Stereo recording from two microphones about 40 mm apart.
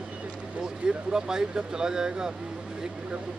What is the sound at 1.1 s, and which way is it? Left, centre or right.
Speech, centre.